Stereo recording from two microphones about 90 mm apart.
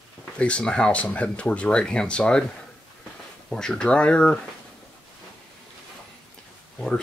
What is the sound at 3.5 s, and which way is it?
Speech, 10° left (ahead or behind).